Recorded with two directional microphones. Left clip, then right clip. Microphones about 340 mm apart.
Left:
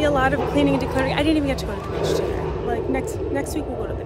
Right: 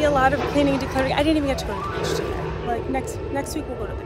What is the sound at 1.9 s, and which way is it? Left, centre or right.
Speech, left.